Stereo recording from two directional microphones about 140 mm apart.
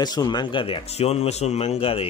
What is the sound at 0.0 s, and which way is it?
Speech, 30° left (ahead or behind).